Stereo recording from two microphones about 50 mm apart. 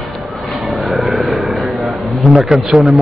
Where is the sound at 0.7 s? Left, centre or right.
Centre.